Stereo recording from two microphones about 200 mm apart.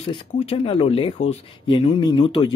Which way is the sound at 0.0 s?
30° left (ahead or behind).